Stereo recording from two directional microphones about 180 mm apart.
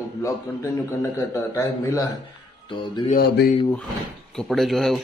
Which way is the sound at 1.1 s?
15° left (ahead or behind).